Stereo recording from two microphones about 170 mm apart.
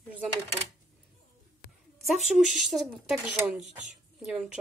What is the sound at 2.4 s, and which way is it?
Speech, centre (ahead or behind).